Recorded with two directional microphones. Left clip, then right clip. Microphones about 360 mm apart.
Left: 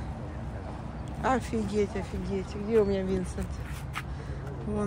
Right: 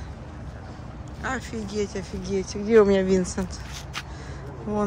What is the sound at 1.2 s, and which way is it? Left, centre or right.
Speech, centre.